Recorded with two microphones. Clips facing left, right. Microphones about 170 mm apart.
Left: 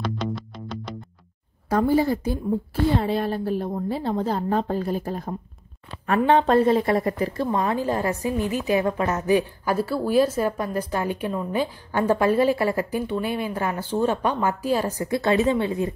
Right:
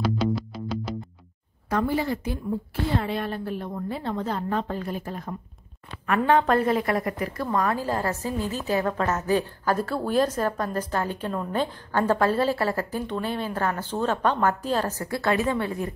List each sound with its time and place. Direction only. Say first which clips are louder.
0.0 s music: right 3 dB; 5° right (ahead or behind)
1.7 s a woman's voice: left 5 dB; 35° left (ahead or behind)